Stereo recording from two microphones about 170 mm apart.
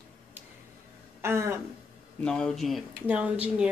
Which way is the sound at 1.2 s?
15° right (ahead or behind).